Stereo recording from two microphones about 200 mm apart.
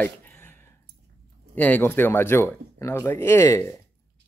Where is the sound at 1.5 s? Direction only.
10° left (ahead or behind).